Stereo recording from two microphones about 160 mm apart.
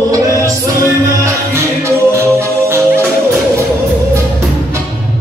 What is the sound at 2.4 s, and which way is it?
Music, 15° right (ahead or behind).